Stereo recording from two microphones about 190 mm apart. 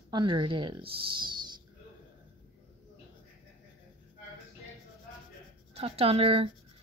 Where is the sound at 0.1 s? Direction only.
25° right (ahead or behind).